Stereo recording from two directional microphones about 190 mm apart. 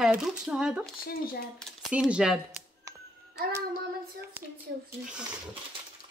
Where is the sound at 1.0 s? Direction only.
50° left (ahead or behind).